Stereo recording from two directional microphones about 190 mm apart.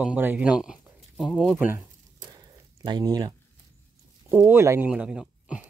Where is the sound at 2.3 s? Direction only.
20° right (ahead or behind).